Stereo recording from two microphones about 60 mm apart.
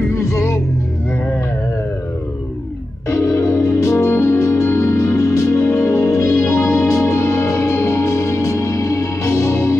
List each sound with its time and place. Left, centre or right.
0.1 s music: left
3.1 s music: left